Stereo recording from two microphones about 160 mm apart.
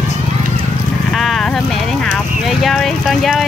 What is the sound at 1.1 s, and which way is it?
Speech, centre (ahead or behind).